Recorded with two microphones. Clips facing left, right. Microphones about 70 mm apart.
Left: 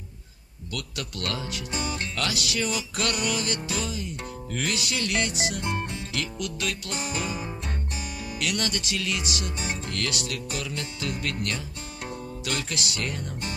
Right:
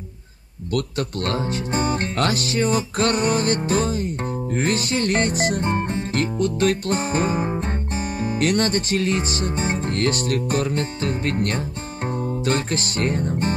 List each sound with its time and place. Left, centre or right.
0.7 s speech: right
12.1 s music: right